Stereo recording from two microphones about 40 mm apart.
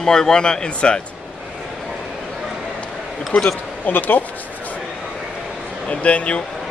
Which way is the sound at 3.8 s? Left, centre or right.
Left.